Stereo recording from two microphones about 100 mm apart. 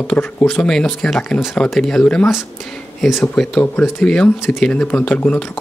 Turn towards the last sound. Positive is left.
turn(degrees=10)  # may be behind; listen again after turning